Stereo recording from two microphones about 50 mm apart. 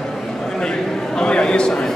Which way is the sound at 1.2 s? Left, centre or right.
Centre.